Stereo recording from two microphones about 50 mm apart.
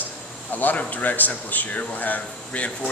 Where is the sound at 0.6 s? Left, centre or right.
Left.